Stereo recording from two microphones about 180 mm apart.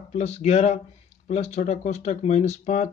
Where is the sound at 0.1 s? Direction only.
40° left (ahead or behind).